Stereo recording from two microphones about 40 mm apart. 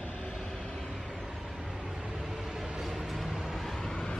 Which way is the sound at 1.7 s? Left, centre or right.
Centre.